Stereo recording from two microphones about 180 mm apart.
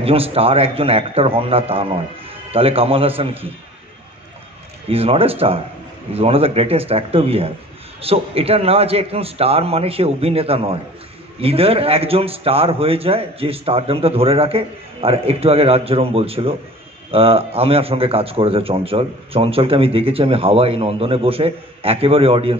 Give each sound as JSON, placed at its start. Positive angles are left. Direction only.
{"t": 0.0, "sound": "a man's voice", "side_deg": -30}
{"t": 4.8, "sound": "a man's voice", "side_deg": -30}